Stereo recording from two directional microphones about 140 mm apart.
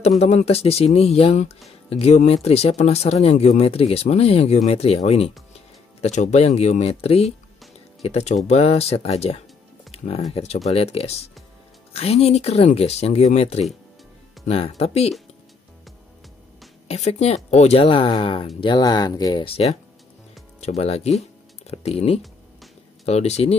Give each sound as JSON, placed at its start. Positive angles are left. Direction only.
{"t": 0.2, "sound": "speech", "side_deg": 50}
{"t": 16.8, "sound": "speech", "side_deg": 50}